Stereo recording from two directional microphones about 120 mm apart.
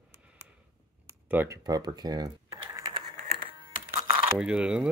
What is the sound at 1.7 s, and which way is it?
Typing, 35° right (ahead or behind).